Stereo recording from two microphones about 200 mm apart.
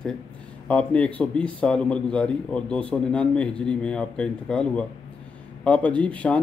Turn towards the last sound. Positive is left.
turn(degrees=5)  # may be behind; listen again after turning